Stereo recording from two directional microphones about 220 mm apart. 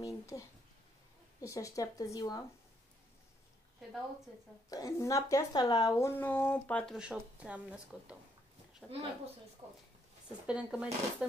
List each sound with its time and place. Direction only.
0.0 s speech: 15° left (ahead or behind)
4.6 s speech: 15° left (ahead or behind); by 8.2 s 5° right (ahead or behind)
8.8 s speech: 5° left (ahead or behind)
10.4 s speech: 5° right (ahead or behind)